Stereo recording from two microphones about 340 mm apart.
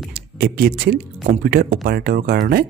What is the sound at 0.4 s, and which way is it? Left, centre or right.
Speech, right.